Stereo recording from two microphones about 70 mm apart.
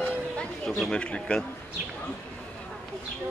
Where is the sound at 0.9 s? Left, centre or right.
Centre.